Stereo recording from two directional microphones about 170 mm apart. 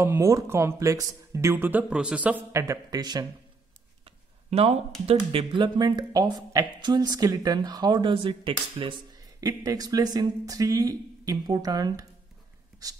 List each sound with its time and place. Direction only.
0.0 s speech: 15° right (ahead or behind)
4.0 s a sound: 35° right (ahead or behind)
5.0 s speech: 35° right (ahead or behind)